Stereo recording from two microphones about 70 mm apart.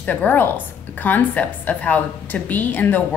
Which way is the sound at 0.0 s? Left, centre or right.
Left.